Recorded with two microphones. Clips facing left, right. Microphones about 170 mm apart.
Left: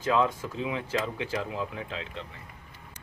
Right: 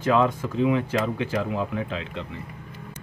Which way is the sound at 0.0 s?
65° right (ahead or behind).